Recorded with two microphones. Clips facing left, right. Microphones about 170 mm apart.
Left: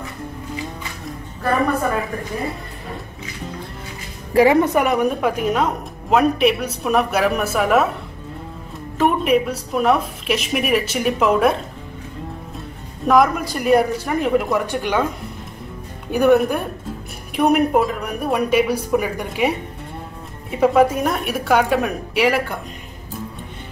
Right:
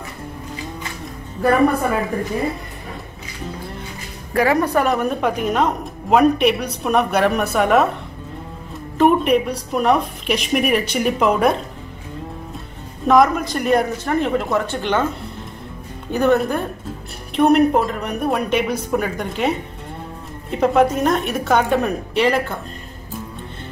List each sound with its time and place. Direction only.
4.3 s a woman's voice: 25° left (ahead or behind)
4.8 s a woman's voice: 5° left (ahead or behind)
8.9 s a woman's voice: centre (ahead or behind)
13.0 s speech: 5° left (ahead or behind)
16.1 s speech: 10° left (ahead or behind)
17.4 s a woman's voice: 5° left (ahead or behind)
20.5 s speech: 5° left (ahead or behind)